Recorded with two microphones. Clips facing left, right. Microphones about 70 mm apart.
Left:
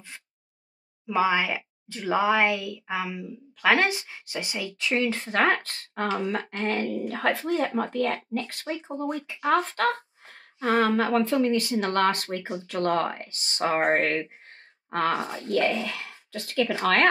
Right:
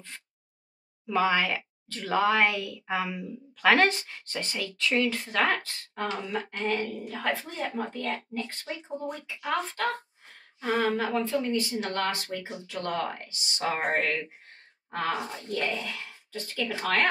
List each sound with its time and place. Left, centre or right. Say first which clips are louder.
1.0 s speech: left 2 dB; centre
2.3 s a woman's voice: left 2 dB; centre; by 9.8 s left
10.2 s a sound: left 5 dB; left
11.2 s speech: left 5 dB; left
15.5 s speech: left 6 dB; left